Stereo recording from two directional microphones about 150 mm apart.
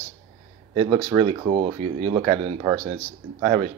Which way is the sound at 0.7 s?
30° right (ahead or behind).